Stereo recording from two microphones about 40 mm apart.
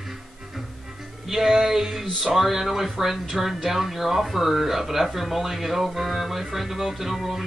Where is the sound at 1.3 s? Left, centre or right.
Centre.